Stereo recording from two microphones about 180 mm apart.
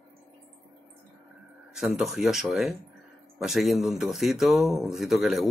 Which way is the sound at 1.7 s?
Centre (ahead or behind).